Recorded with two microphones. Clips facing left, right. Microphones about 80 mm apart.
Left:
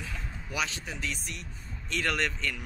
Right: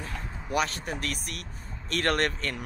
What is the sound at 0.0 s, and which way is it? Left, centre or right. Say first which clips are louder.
Speech: right 3 dB; right.